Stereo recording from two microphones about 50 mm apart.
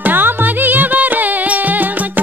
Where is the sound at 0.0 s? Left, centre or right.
Right.